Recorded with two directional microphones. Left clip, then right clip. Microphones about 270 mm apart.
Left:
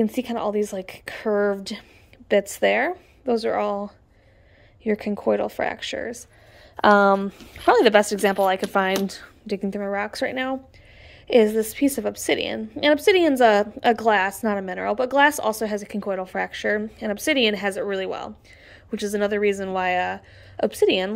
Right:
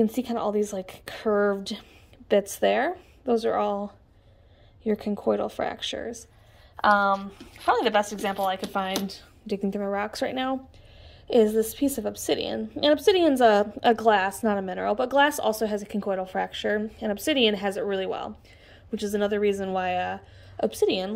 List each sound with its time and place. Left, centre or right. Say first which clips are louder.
0.0 s a woman's voice: left 2 dB; centre
6.9 s a woman's voice: left 5 dB; left